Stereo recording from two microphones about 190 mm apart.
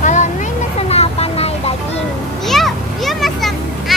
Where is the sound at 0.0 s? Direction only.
40° left (ahead or behind).